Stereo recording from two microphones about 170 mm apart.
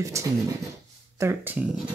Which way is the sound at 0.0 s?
20° right (ahead or behind).